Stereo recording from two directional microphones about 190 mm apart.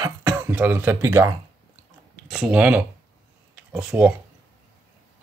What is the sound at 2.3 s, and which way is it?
Speech, 5° right (ahead or behind).